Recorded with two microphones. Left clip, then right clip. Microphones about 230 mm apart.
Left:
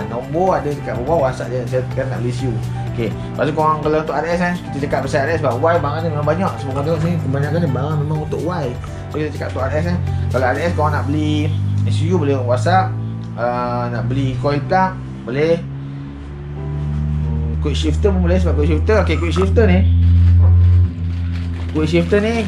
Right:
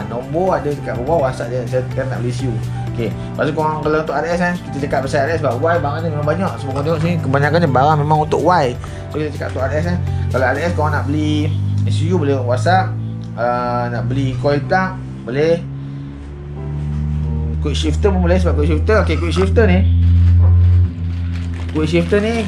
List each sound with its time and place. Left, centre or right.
0.3 s speech: centre
17.6 s speech: centre
21.7 s speech: centre